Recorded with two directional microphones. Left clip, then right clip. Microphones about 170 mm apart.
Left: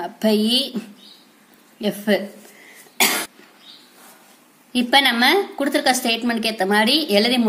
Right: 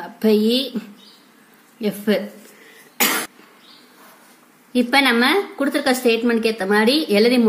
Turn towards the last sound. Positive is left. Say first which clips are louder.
# right 1 dB
turn(degrees=50)  # may be behind; listen again after turning